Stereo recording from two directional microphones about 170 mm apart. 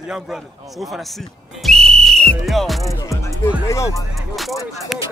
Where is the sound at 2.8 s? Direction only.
20° left (ahead or behind).